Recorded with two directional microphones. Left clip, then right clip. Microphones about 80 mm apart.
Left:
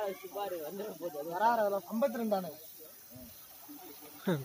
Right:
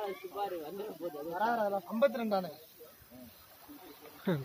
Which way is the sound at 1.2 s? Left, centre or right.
Centre.